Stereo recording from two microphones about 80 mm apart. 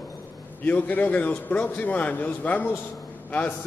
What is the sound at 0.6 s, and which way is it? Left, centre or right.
A man's voice, centre.